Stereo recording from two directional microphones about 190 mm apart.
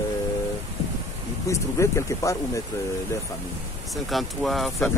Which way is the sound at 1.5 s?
15° left (ahead or behind).